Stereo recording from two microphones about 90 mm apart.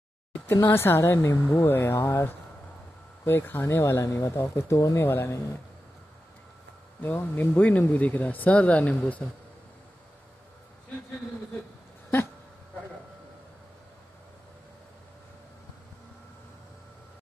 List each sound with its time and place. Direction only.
0.3 s speech: 20° left (ahead or behind)
7.0 s speech: 20° left (ahead or behind)